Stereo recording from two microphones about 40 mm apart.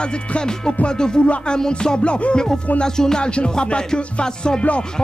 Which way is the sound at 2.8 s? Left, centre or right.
Centre.